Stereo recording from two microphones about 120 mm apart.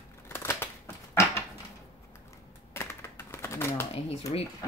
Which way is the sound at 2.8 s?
20° left (ahead or behind).